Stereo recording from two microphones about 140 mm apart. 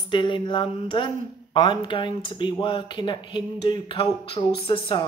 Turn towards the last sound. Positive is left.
turn(degrees=35)  # may be behind; listen again after turning